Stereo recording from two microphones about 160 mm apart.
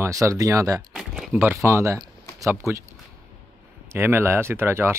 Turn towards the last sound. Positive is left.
turn(degrees=-15)  # may be behind; listen again after turning